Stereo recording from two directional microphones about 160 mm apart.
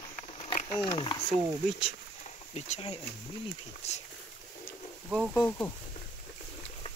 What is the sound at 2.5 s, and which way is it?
Speech, 40° left (ahead or behind).